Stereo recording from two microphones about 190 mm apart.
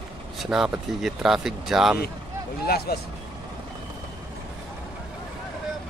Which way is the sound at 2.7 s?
55° left (ahead or behind).